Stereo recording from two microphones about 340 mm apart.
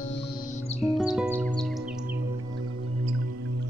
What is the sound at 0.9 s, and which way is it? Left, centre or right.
Music, centre.